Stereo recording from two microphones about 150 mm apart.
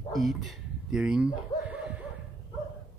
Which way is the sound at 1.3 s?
10° right (ahead or behind).